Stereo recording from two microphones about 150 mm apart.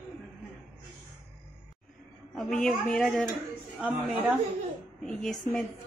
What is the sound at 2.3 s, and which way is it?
Speech, 5° left (ahead or behind).